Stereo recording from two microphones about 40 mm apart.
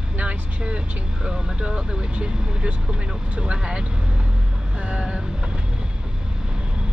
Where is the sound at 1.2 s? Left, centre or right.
Right.